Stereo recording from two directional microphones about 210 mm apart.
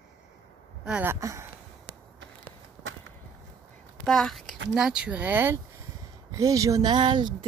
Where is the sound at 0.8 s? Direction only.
10° right (ahead or behind).